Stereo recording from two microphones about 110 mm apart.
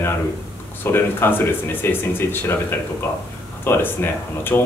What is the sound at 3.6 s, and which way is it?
Speech, 20° left (ahead or behind).